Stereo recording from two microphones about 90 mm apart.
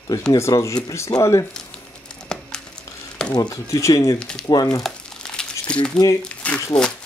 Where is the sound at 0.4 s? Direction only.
35° left (ahead or behind).